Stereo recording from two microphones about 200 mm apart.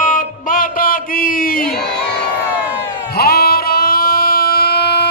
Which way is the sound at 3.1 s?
50° left (ahead or behind).